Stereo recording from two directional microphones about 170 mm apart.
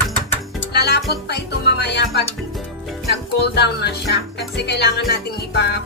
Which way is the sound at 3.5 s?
75° left (ahead or behind).